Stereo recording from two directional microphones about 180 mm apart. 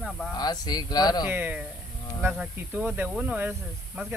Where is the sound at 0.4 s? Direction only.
25° left (ahead or behind).